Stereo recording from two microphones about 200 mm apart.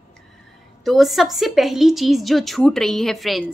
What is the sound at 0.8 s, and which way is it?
A woman's voice, centre (ahead or behind).